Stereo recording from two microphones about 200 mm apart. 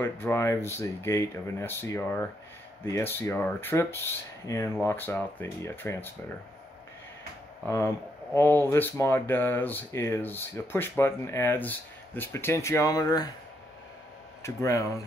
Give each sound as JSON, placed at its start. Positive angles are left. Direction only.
{"t": 0.0, "sound": "speech", "side_deg": 10}
{"t": 7.6, "sound": "speech", "side_deg": 15}
{"t": 14.4, "sound": "speech", "side_deg": 15}